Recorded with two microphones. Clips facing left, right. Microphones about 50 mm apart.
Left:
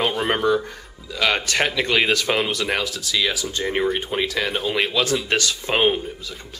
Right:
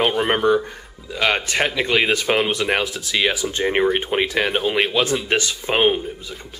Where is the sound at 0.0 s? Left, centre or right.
Centre.